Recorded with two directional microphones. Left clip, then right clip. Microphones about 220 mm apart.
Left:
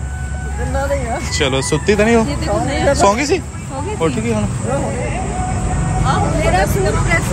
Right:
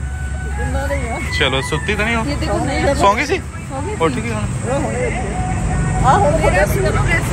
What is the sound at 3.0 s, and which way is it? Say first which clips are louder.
Speech: left 1 dB; 20° left (ahead or behind).